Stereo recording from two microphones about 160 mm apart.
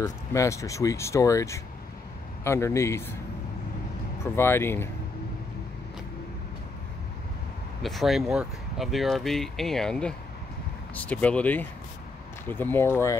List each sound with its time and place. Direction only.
0.0 s speech: 20° left (ahead or behind)
4.2 s speech: 15° left (ahead or behind)
7.8 s speech: centre (ahead or behind); by 13.2 s 15° left (ahead or behind)